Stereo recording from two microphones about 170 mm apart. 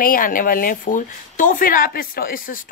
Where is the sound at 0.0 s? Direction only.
55° left (ahead or behind).